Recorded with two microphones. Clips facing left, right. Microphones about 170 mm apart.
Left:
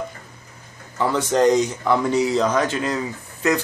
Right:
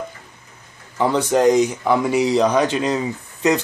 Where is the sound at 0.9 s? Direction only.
15° right (ahead or behind).